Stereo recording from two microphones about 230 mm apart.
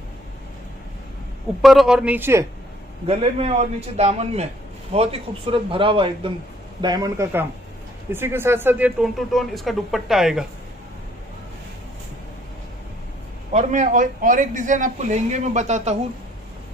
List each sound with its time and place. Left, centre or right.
1.6 s speech: centre
3.1 s a man's voice: right; by 10.4 s centre
13.5 s a man's voice: right